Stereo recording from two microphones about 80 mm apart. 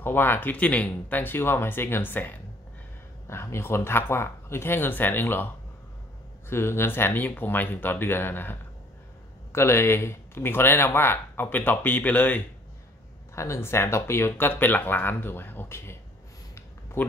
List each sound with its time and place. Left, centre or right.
0.0 s speech: left
6.5 s speech: left
13.3 s speech: left